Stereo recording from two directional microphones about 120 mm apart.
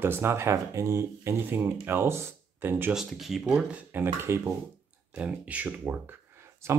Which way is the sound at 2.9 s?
Centre (ahead or behind).